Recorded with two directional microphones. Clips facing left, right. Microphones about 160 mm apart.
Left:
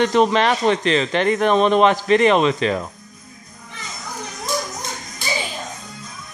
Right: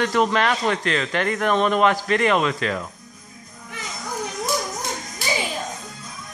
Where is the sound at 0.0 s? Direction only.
20° left (ahead or behind).